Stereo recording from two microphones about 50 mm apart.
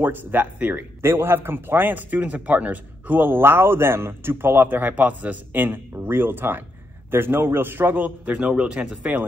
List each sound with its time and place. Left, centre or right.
0.0 s speech: right
1.0 s speech: right
8.5 s a man's voice: right